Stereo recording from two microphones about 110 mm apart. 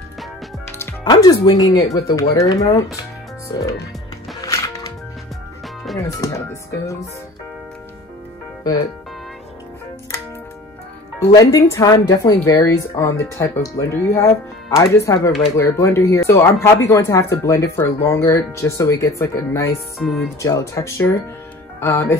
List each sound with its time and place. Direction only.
0.7 s music: 20° left (ahead or behind)
1.0 s speech: 35° left (ahead or behind)
4.4 s music: 30° left (ahead or behind)
6.0 s speech: 30° left (ahead or behind)
11.3 s speech: 30° left (ahead or behind)
20.0 s music: centre (ahead or behind)
20.4 s speech: 30° left (ahead or behind)